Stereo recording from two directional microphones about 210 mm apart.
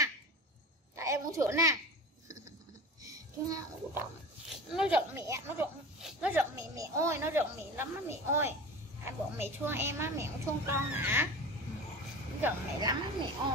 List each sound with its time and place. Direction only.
0.9 s a sound: 15° right (ahead or behind)
3.1 s a child's voice: 15° right (ahead or behind)
4.5 s a woman's voice: centre (ahead or behind)
12.4 s a woman's voice: 10° right (ahead or behind)